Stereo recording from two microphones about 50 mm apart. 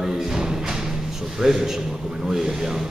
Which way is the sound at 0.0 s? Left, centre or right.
Centre.